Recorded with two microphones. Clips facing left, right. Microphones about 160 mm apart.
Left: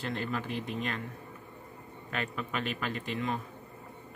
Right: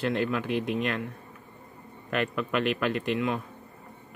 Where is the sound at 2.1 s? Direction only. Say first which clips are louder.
Right 8 dB; 70° right (ahead or behind).